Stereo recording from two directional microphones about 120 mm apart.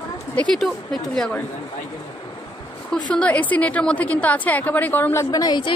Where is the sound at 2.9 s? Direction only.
10° left (ahead or behind).